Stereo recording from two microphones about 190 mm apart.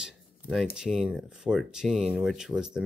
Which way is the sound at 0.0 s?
Centre (ahead or behind).